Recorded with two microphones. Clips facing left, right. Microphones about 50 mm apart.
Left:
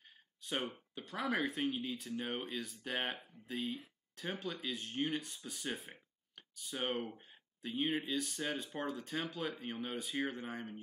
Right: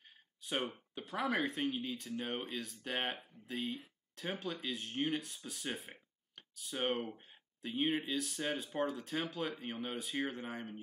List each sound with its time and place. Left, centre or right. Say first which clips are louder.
0.4 s speech: right 1 dB; centre